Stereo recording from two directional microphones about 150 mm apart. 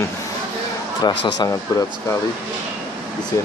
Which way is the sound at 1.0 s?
30° left (ahead or behind).